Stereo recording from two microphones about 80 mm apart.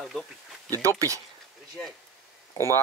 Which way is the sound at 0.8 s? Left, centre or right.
Right.